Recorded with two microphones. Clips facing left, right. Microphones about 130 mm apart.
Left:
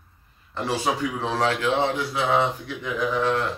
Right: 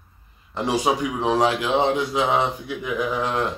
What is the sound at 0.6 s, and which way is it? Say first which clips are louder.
A man's voice: right 3 dB; 15° right (ahead or behind).